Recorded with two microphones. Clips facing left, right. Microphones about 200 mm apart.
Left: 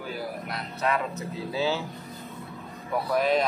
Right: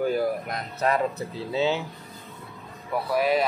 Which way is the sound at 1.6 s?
20° right (ahead or behind).